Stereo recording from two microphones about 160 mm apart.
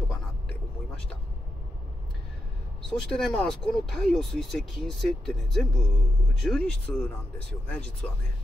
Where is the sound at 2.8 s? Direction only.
5° left (ahead or behind).